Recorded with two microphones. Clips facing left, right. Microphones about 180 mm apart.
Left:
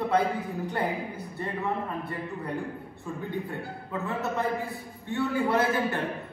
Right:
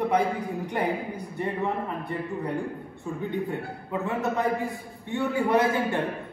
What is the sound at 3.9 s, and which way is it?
A man's voice, 15° right (ahead or behind).